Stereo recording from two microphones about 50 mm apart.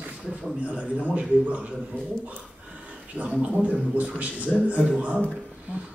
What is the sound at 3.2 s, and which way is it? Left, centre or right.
Speech, right.